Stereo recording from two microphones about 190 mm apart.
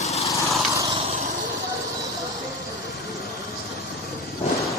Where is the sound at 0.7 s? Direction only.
15° right (ahead or behind).